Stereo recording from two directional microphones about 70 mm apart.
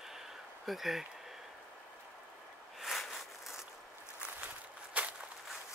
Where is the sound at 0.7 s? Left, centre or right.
Centre.